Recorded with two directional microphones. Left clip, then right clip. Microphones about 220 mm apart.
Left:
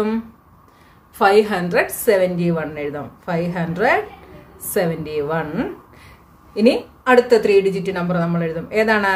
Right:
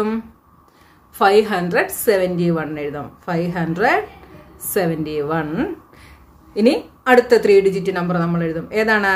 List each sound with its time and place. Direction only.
1.1 s a woman's voice: 15° right (ahead or behind)